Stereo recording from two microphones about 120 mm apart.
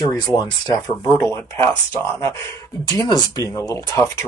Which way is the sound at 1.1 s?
15° left (ahead or behind).